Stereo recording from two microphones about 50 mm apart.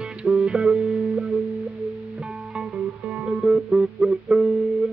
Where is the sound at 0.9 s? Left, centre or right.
Centre.